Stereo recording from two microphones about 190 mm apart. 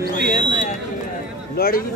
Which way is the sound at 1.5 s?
50° left (ahead or behind).